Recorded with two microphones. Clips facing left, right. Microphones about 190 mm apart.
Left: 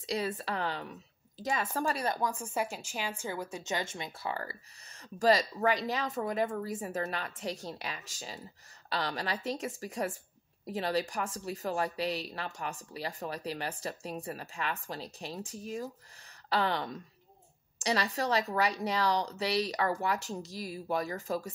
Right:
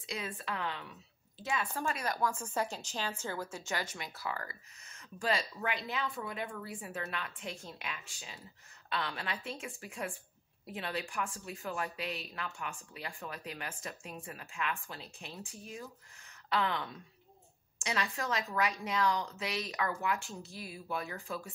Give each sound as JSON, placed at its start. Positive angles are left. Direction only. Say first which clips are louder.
{"t": 0.0, "sound": "speech", "louder": "left 7 dB", "side_deg": 35}
{"t": 2.1, "sound": "a woman's voice", "louder": "left 1 dB", "side_deg": 15}
{"t": 5.2, "sound": "speech", "louder": "left 8 dB", "side_deg": 40}